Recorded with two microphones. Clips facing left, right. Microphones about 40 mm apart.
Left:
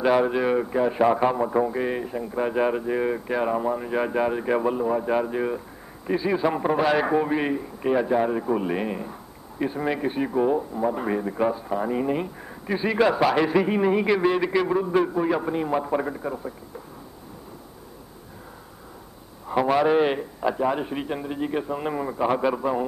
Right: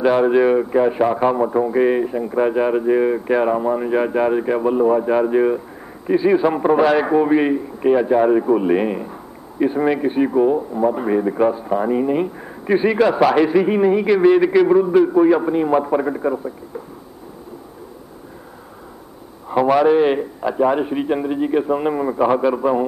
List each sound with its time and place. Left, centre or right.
0.1 s a man's voice: centre
1.0 s speech: centre
1.7 s speech: centre
2.5 s a man's voice: centre
4.5 s speech: centre
4.7 s a man's voice: centre
12.9 s a man's voice: centre
19.5 s a sound: centre
19.9 s a man's voice: centre
22.3 s speech: centre
22.6 s a man's voice: centre